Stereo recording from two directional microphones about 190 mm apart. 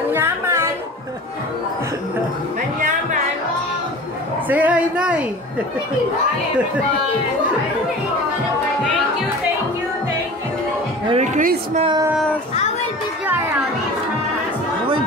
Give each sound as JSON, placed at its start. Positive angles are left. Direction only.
{"t": 0.1, "sound": "music", "side_deg": -10}
{"t": 4.5, "sound": "a sound", "side_deg": -10}
{"t": 11.1, "sound": "a woman's voice", "side_deg": -40}
{"t": 11.8, "sound": "speech", "side_deg": -20}